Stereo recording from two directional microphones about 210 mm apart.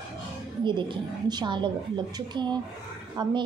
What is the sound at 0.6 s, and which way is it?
A woman's voice, 20° right (ahead or behind).